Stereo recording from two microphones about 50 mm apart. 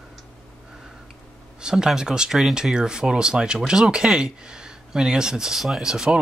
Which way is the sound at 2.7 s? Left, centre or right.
Centre.